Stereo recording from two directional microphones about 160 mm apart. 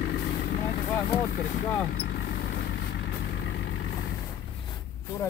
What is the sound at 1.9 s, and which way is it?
Vehicle, 70° left (ahead or behind).